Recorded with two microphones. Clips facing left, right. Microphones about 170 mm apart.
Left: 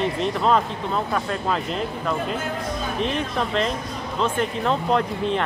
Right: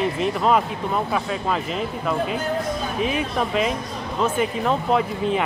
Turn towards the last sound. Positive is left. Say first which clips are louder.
# right 1 dB
turn(degrees=-5)  # may be behind; listen again after turning